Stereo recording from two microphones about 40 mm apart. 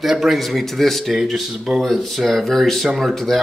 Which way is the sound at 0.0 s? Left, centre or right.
Centre.